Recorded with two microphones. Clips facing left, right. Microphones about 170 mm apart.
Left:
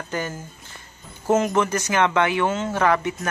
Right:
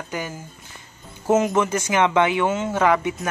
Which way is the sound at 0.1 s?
10° right (ahead or behind).